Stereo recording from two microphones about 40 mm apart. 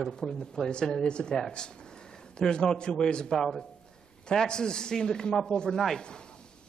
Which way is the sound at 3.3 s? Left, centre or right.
Centre.